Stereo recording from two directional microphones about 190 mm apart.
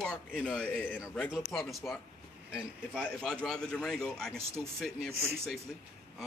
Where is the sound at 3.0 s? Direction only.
5° left (ahead or behind).